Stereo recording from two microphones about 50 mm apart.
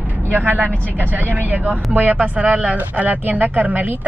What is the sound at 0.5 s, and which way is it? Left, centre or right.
Speech, right.